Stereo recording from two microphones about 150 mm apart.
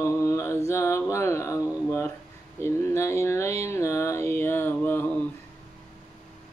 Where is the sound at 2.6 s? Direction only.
15° left (ahead or behind).